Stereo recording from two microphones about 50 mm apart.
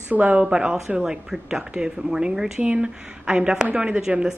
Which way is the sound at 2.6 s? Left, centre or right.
Right.